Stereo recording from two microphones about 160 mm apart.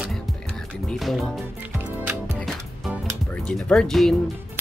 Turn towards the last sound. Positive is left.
turn(degrees=0)  # may be behind; listen again after turning